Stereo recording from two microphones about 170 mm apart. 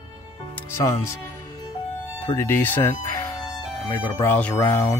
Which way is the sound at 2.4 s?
10° left (ahead or behind).